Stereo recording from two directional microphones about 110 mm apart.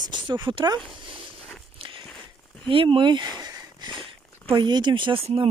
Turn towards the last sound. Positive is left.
turn(degrees=-60)  # may be behind; listen again after turning